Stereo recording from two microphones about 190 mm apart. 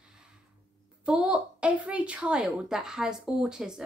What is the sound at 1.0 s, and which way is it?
A woman's voice, 5° right (ahead or behind).